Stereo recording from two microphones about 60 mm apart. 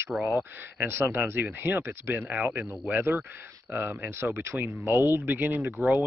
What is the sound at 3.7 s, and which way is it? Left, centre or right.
Speech, right.